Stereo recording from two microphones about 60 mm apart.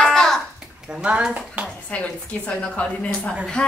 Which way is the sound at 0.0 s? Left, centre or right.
Centre.